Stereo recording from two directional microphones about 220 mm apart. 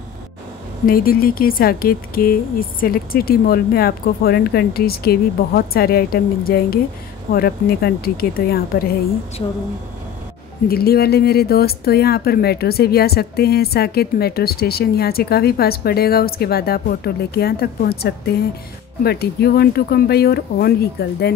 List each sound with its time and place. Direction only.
0.8 s speech: 40° left (ahead or behind)
10.7 s speech: 45° left (ahead or behind)